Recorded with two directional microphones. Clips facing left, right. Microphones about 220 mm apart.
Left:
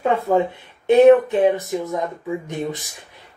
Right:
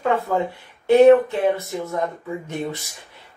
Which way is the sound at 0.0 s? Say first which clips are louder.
Left 3 dB; 20° left (ahead or behind).